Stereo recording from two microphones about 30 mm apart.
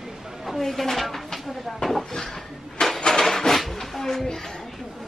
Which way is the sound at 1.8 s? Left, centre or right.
Centre.